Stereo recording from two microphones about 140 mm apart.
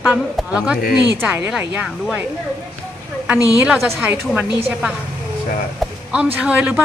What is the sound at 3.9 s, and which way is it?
A man's voice, 15° right (ahead or behind).